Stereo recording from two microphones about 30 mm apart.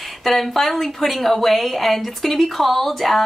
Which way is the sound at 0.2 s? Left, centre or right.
Centre.